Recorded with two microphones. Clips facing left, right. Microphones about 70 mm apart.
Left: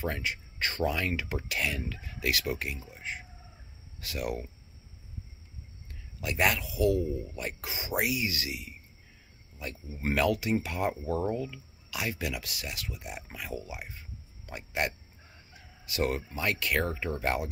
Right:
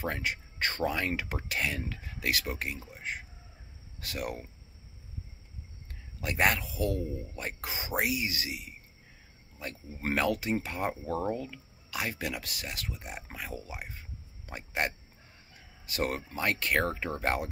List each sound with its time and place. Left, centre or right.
0.0 s speech: right
4.0 s speech: right
6.2 s speech: right
11.3 s speech: right
13.8 s a sound: right
14.7 s speech: right